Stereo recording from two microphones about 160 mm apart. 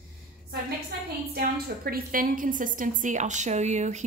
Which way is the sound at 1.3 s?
70° right (ahead or behind).